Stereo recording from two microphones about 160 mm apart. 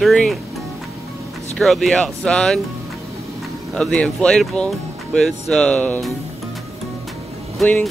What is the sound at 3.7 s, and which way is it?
Speech, 5° left (ahead or behind).